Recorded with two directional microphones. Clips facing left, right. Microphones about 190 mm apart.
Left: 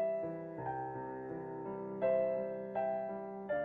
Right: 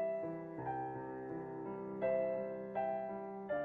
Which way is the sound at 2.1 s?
35° left (ahead or behind).